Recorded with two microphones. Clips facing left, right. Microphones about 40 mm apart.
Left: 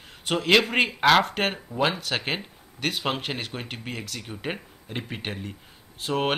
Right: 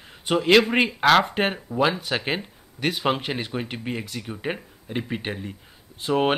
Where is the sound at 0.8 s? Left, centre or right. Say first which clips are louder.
Right 1 dB; centre.